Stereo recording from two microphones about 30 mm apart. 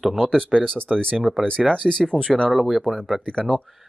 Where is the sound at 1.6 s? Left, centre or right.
Centre.